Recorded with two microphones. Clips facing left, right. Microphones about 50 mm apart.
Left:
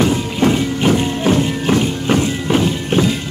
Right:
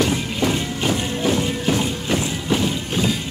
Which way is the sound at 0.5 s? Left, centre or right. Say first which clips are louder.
Left 9 dB; left.